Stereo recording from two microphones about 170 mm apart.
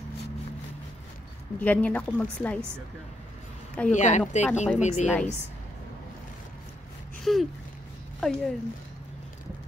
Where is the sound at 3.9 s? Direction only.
45° left (ahead or behind).